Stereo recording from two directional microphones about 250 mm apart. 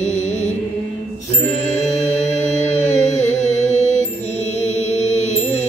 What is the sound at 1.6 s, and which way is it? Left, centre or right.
Music, left.